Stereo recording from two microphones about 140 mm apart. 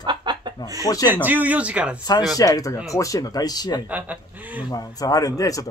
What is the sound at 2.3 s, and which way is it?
Speech, 25° left (ahead or behind).